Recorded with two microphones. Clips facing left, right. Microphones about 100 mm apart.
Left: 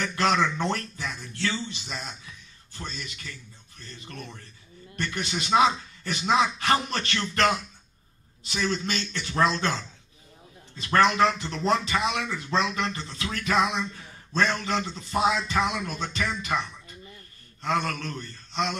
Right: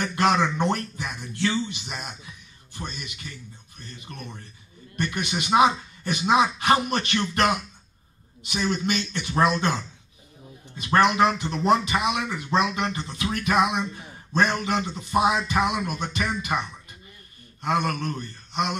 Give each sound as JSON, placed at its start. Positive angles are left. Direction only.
{"t": 0.0, "sound": "a man's voice", "side_deg": -20}
{"t": 10.8, "sound": "a man's voice", "side_deg": -20}
{"t": 17.6, "sound": "a sound", "side_deg": -15}